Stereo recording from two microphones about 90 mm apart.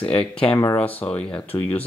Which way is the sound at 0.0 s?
15° left (ahead or behind).